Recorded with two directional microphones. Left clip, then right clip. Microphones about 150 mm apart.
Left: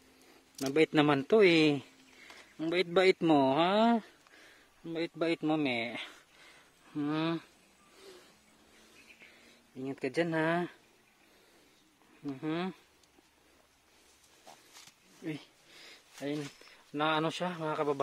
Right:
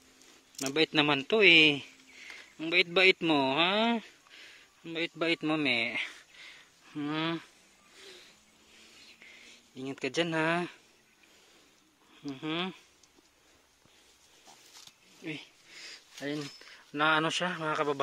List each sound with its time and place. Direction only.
0.6 s speech: 15° left (ahead or behind)
0.9 s a man's voice: 30° left (ahead or behind)
4.8 s speech: 15° left (ahead or behind)
5.9 s a sound: 15° left (ahead or behind)
9.8 s speech: 10° left (ahead or behind)
12.4 s a man's voice: 20° left (ahead or behind)
15.2 s a man's voice: 30° left (ahead or behind)
15.7 s a sound: 10° left (ahead or behind)
16.6 s speech: centre (ahead or behind)